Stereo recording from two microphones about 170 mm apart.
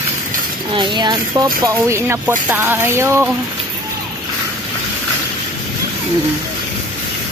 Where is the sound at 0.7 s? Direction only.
30° right (ahead or behind).